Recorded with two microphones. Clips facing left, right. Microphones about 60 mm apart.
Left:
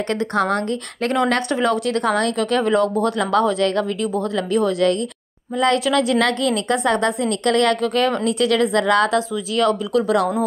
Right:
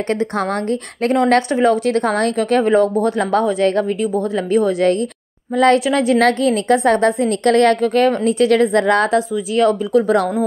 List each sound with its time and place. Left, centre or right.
0.1 s a woman's voice: right
5.5 s speech: right
5.9 s a woman's voice: right